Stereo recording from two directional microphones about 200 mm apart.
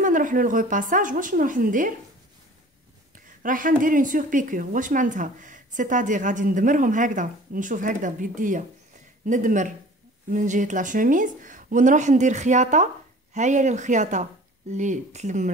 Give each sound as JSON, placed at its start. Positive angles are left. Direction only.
{"t": 0.0, "sound": "a woman's voice", "side_deg": -40}
{"t": 3.4, "sound": "a woman's voice", "side_deg": -40}